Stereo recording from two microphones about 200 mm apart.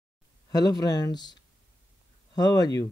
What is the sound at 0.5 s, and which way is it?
Speech, 20° left (ahead or behind).